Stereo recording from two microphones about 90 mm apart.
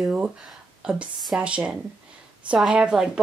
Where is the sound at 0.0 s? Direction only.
5° right (ahead or behind).